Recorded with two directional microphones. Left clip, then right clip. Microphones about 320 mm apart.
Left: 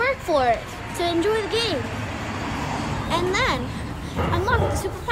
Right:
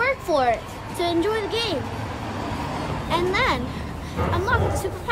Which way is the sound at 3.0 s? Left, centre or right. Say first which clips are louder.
Right 1 dB; centre.